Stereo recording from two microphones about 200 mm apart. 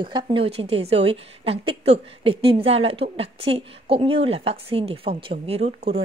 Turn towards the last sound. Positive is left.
turn(degrees=-30)  # may be behind; listen again after turning